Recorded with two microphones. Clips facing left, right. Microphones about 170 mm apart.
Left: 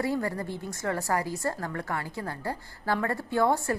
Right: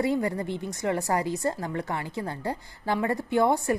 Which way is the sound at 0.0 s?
20° right (ahead or behind).